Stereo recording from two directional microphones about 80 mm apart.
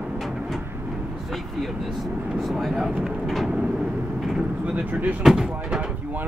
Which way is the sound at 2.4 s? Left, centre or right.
Centre.